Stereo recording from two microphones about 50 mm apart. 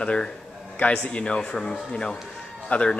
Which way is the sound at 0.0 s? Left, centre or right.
Left.